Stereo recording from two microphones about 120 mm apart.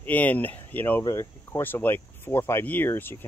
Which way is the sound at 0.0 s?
15° left (ahead or behind).